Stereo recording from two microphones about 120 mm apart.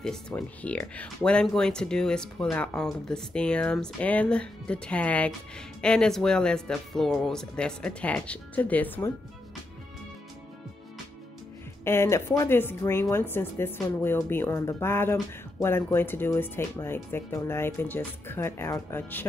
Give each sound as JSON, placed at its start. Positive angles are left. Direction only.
{"t": 0.3, "sound": "speech", "side_deg": 10}
{"t": 11.8, "sound": "speech", "side_deg": 20}